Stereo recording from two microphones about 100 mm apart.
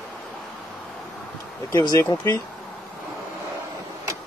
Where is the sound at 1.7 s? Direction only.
45° left (ahead or behind).